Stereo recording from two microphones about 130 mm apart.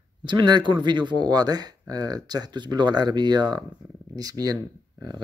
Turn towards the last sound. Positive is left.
turn(degrees=-30)  # may be behind; listen again after turning